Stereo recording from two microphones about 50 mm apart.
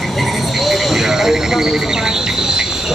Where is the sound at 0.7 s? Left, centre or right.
Centre.